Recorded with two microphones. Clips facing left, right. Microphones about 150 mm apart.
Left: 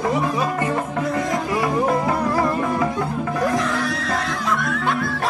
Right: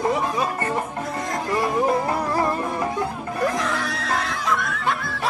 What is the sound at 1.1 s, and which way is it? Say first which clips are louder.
Music: left 5 dB; 90° left.